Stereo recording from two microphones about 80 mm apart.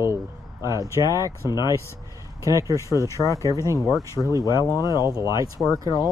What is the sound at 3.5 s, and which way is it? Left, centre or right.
Speech, right.